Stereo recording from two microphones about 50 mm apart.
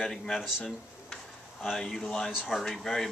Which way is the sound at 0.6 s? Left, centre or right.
Centre.